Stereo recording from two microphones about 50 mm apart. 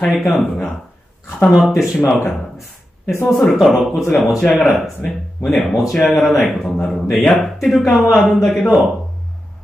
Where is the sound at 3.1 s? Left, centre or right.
Left.